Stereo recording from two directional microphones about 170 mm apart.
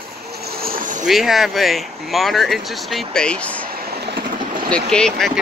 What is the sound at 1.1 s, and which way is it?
Speech, centre (ahead or behind).